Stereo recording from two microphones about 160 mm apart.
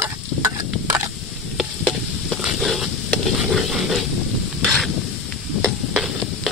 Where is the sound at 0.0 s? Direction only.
20° right (ahead or behind).